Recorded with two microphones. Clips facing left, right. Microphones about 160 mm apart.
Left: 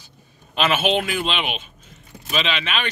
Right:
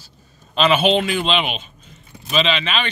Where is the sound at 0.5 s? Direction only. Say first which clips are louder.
Right 4 dB; 5° left (ahead or behind).